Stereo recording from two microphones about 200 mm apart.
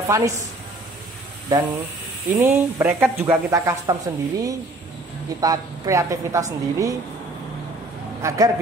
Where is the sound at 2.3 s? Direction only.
10° right (ahead or behind).